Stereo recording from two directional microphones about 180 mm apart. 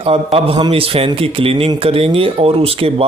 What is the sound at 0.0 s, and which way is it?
Speech, 30° right (ahead or behind).